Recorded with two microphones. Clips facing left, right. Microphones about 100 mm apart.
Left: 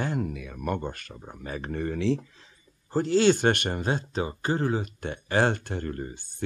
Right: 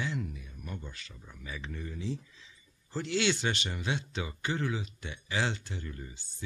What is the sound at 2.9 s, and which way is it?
Speech, 40° left (ahead or behind).